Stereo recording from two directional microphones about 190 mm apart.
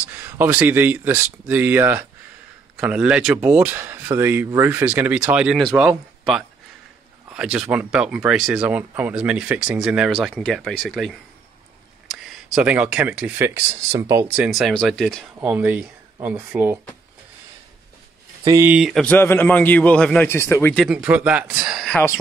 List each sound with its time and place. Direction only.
0.1 s speech: 10° right (ahead or behind)
15.4 s speech: 10° right (ahead or behind)
18.4 s speech: 20° right (ahead or behind)
18.7 s speech: centre (ahead or behind)
21.0 s speech: 5° right (ahead or behind)
21.9 s speech: 15° left (ahead or behind)